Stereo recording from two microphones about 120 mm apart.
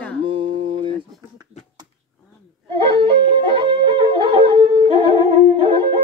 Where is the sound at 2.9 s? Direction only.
45° right (ahead or behind).